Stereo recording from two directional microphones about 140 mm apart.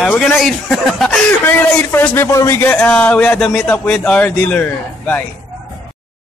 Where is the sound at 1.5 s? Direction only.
15° left (ahead or behind).